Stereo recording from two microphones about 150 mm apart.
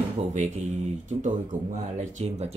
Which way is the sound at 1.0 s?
50° right (ahead or behind).